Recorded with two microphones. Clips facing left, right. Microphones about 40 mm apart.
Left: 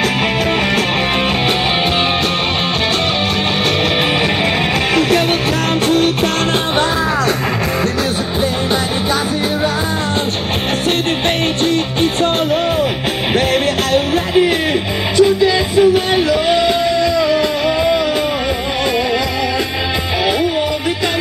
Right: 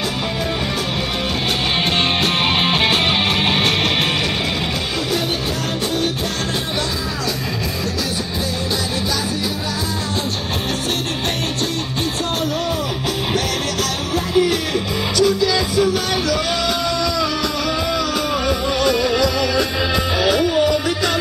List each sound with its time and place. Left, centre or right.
13.9 s music: left
20.2 s music: left